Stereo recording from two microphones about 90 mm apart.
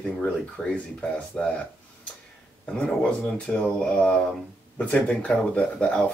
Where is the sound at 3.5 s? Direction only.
20° left (ahead or behind).